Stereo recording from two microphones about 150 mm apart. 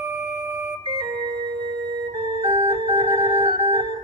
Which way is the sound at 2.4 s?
35° right (ahead or behind).